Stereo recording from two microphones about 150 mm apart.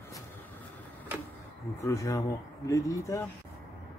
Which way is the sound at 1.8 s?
20° left (ahead or behind).